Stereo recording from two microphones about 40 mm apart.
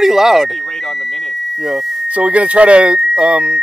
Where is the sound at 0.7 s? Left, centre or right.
Centre.